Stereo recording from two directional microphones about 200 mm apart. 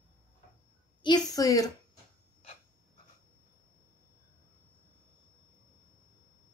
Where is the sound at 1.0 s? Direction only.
20° left (ahead or behind).